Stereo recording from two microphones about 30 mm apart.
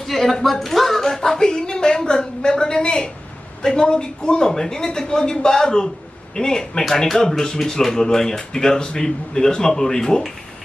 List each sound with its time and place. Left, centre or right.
0.0 s speech: centre